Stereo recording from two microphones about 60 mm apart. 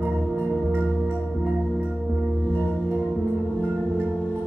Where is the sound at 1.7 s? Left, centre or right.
Right.